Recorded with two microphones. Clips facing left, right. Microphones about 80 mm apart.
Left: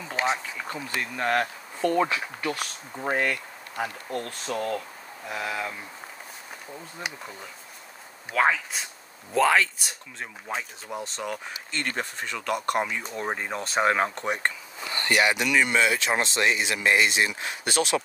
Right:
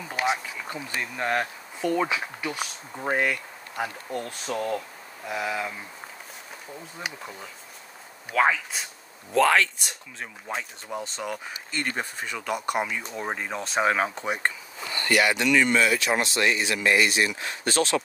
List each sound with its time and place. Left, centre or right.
0.3 s speech: centre
8.3 s speech: centre
15.0 s speech: left
15.3 s speech: centre
15.7 s speech: left